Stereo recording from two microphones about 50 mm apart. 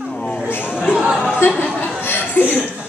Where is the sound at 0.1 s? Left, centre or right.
Centre.